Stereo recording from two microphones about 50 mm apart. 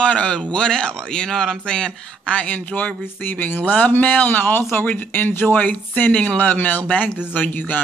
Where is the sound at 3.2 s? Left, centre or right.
Left.